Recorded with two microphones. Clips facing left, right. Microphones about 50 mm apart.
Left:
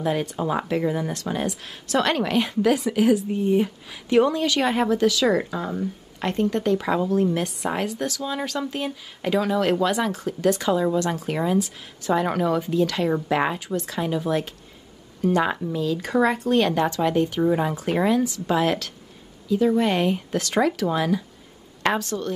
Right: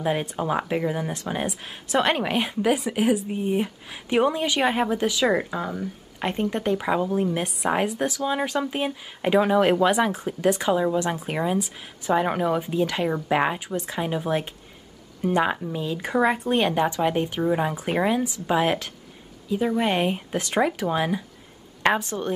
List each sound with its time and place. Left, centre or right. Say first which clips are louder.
0.0 s a woman's voice: left 1 dB; centre